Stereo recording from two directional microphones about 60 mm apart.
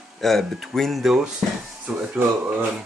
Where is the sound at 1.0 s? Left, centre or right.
Centre.